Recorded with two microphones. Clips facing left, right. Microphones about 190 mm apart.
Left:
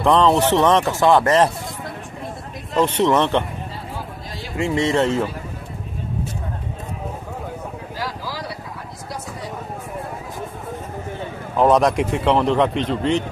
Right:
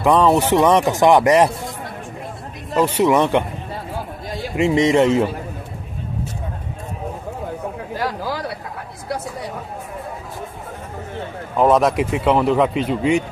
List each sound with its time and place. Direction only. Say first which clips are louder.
0.0 s speech: right 1 dB; 10° right (ahead or behind)
2.7 s speech: right 1 dB; 10° right (ahead or behind)
4.6 s speech: right 4 dB; 20° right (ahead or behind)
7.9 s a sound: right 6 dB; 55° right (ahead or behind)
11.5 s speech: even; 5° right (ahead or behind)